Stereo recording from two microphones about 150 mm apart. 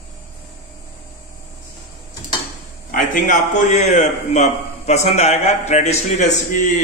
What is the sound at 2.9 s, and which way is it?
A man's voice, 60° left (ahead or behind).